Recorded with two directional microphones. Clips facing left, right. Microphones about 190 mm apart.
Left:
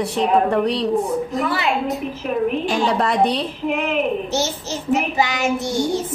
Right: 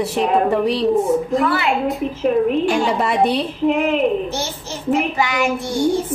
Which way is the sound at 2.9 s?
5° right (ahead or behind).